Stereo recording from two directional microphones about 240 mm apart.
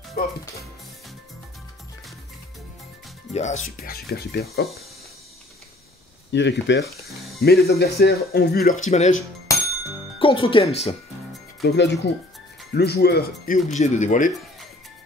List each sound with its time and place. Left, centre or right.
0.2 s speech: left
3.3 s speech: left
3.8 s speech: left
6.3 s speech: left
6.8 s speech: centre
7.4 s speech: left
8.8 s speech: left
11.6 s speech: left
13.7 s speech: left